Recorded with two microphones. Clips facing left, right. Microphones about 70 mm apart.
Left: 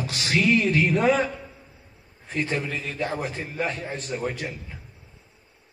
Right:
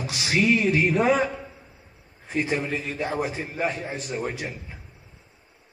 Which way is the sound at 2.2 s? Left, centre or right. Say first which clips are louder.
Right 2 dB; centre.